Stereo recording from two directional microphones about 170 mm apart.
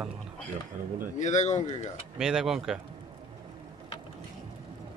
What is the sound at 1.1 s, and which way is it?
Speech, 45° left (ahead or behind).